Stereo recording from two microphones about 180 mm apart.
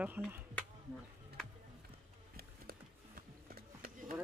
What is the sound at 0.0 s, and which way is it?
Speech, 10° right (ahead or behind).